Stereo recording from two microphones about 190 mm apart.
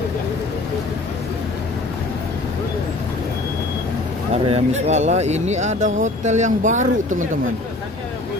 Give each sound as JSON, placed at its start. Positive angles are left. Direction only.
{"t": 4.5, "sound": "speech", "side_deg": -35}